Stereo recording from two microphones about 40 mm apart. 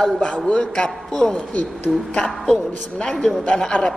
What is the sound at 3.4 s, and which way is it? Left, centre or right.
Speech, left.